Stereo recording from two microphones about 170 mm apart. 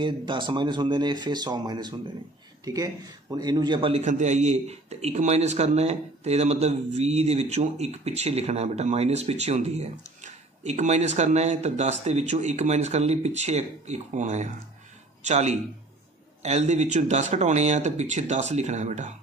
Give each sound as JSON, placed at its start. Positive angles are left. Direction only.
{"t": 0.0, "sound": "speech", "side_deg": -30}
{"t": 4.0, "sound": "a man's voice", "side_deg": -45}